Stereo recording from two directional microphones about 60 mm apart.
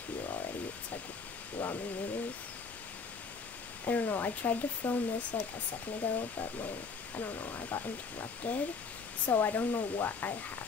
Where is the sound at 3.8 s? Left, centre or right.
Left.